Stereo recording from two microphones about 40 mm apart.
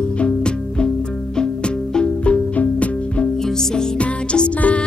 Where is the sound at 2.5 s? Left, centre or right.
Left.